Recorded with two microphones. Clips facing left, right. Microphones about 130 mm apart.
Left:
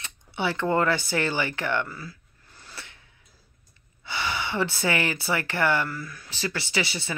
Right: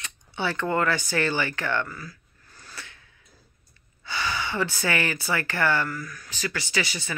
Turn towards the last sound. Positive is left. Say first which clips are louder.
# left 1 dB
turn(degrees=25)  # may be behind; listen again after turning